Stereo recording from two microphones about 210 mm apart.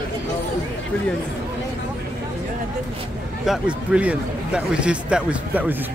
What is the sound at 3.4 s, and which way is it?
Speech, 5° right (ahead or behind).